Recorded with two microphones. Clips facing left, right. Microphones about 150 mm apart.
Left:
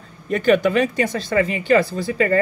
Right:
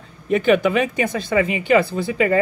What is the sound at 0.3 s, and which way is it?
Speech, 15° right (ahead or behind).